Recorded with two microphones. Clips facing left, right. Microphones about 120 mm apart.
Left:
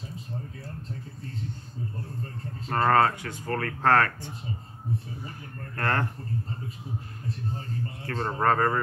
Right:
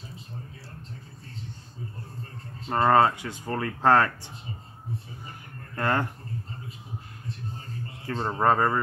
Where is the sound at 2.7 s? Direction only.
20° right (ahead or behind).